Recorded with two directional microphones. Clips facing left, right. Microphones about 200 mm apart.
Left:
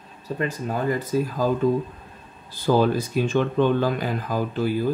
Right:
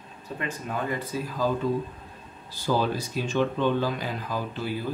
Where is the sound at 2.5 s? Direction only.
55° left (ahead or behind).